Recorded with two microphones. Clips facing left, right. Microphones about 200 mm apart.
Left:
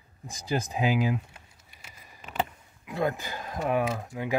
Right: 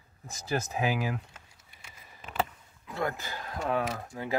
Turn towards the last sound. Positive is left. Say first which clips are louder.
# left 3 dB
turn(degrees=15)  # may be behind; listen again after turning